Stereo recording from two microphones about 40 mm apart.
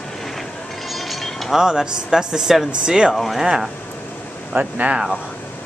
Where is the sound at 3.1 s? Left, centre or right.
Centre.